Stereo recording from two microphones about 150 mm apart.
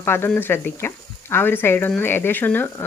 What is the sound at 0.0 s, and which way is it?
Speech, 15° left (ahead or behind).